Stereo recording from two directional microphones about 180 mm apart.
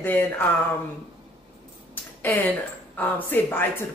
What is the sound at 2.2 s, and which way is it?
A man's voice, 10° left (ahead or behind).